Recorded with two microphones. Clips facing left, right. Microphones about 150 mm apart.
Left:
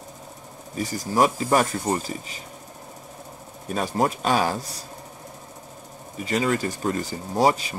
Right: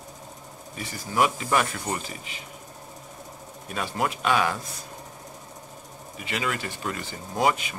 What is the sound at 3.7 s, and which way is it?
Speech, 40° left (ahead or behind).